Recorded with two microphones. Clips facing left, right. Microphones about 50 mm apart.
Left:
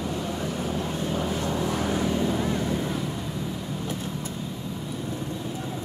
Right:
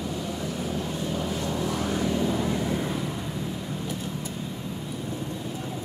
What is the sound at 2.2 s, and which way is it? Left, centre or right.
Vehicle, centre.